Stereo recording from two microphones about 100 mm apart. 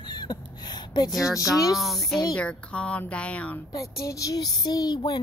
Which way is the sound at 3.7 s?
35° left (ahead or behind).